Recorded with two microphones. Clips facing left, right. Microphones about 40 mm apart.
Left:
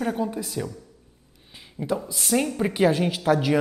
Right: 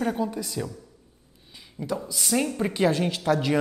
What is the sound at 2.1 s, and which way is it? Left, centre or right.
Speech, centre.